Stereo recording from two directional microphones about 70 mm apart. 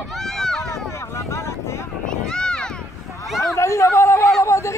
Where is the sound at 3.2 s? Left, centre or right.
Centre.